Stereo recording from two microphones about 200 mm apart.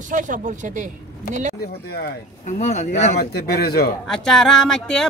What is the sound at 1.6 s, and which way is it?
Speech, 55° left (ahead or behind).